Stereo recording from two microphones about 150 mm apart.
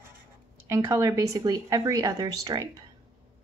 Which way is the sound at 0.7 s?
20° right (ahead or behind).